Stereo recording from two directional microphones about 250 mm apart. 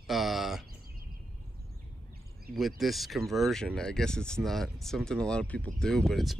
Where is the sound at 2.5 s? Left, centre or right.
Centre.